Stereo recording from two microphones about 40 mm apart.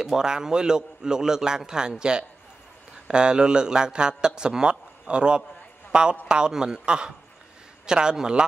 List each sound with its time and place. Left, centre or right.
0.0 s a man's voice: centre
5.9 s a sound: right
6.2 s speech: right